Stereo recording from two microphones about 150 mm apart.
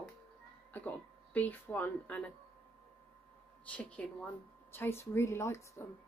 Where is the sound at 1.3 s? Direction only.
10° left (ahead or behind).